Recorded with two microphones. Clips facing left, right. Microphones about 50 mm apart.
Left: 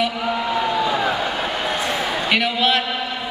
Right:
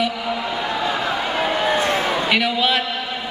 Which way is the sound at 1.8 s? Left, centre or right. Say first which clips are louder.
Right 3 dB; right.